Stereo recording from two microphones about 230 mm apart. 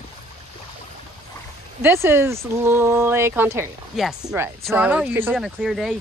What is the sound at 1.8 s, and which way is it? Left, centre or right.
Speech, centre.